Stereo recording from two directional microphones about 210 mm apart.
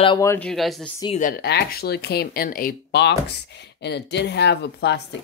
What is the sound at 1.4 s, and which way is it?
Speech, 50° left (ahead or behind).